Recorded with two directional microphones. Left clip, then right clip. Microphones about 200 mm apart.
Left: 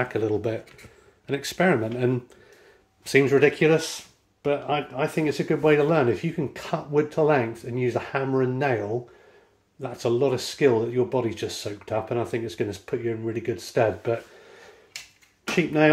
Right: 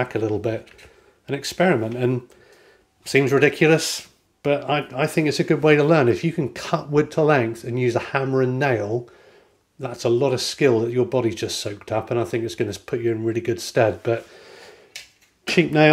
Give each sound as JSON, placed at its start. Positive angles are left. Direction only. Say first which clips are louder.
{"t": 0.0, "sound": "speech", "louder": "right 2 dB", "side_deg": -25}